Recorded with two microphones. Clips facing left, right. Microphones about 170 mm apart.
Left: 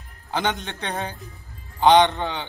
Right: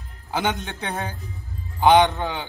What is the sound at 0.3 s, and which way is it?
A man's voice, 10° right (ahead or behind).